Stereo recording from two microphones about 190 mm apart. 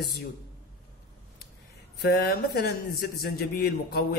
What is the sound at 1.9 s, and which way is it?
A man's voice, 55° left (ahead or behind).